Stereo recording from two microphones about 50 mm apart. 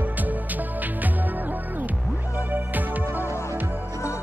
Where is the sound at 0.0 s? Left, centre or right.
Right.